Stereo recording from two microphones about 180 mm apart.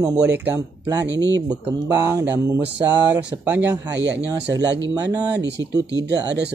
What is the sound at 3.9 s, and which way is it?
Speech, 75° right (ahead or behind).